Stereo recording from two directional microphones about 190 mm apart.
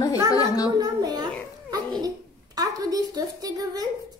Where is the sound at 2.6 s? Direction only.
20° right (ahead or behind).